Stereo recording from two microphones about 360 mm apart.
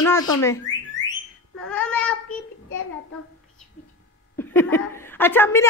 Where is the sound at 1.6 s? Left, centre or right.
Centre.